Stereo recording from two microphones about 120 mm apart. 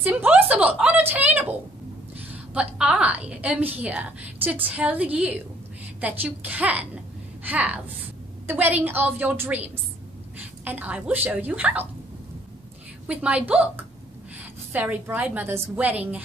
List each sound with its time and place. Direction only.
0.0 s a sound: 10° right (ahead or behind)
2.1 s a woman's voice: 10° right (ahead or behind)
13.0 s a woman's voice: 10° right (ahead or behind)